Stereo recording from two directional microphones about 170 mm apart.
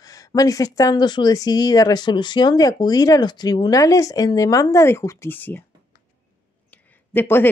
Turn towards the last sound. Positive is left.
turn(degrees=10)  # may be behind; listen again after turning